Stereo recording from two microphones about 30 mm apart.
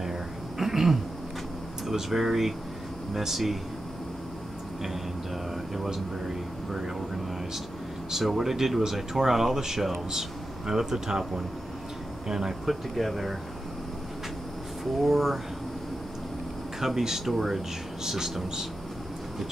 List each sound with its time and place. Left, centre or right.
0.0 s a sound: centre
1.9 s speech: centre
5.9 s speech: centre
8.1 s speech: centre
12.6 s speech: centre
15.0 s speech: centre
16.8 s speech: centre